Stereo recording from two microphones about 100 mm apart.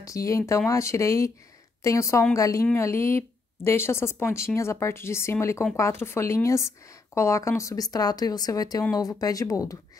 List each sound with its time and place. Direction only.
0.0 s a woman's voice: 30° left (ahead or behind)